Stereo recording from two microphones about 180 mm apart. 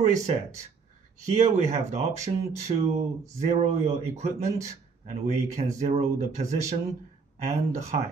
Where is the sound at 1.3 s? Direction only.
40° right (ahead or behind).